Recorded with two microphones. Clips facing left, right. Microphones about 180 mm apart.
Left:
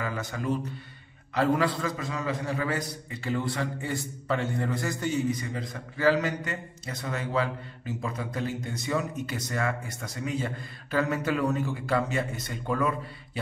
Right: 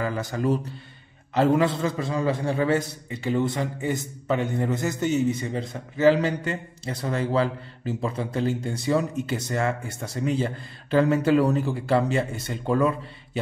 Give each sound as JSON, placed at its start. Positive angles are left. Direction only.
{"t": 0.0, "sound": "a man's voice", "side_deg": -35}
{"t": 1.3, "sound": "a man's voice", "side_deg": -25}